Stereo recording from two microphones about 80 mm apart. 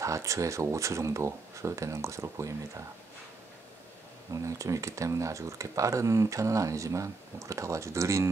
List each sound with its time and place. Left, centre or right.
0.0 s speech: right
4.3 s speech: right